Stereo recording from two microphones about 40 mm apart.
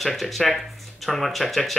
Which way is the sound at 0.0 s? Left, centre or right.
Centre.